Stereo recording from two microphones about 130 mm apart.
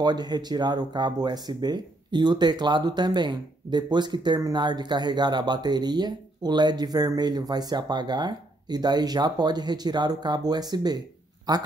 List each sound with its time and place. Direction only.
0.0 s speech: 35° right (ahead or behind)